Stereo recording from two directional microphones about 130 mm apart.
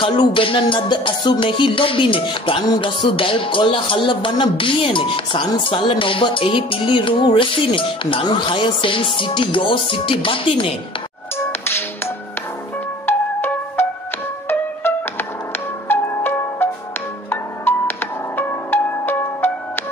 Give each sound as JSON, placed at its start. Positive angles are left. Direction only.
{"t": 0.0, "sound": "music", "side_deg": 40}
{"t": 13.0, "sound": "music", "side_deg": 15}